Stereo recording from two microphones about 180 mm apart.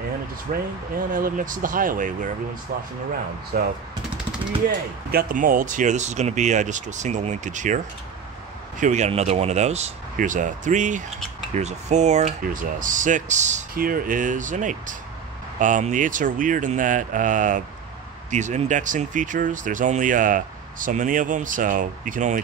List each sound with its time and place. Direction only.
0.5 s speech: 45° right (ahead or behind)